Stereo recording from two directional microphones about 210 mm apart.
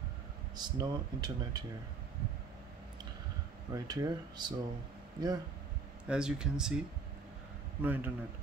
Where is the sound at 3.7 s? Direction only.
20° right (ahead or behind).